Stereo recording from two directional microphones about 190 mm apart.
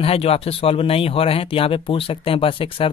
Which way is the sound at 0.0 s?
30° left (ahead or behind).